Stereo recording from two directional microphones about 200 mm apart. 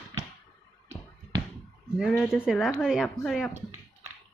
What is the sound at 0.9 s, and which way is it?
Bouncing, 20° right (ahead or behind).